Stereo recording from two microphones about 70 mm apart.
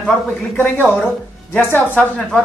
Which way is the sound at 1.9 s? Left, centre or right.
Centre.